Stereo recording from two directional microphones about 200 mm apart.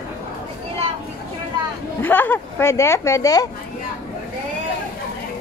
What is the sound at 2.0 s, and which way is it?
A woman's voice, 10° left (ahead or behind).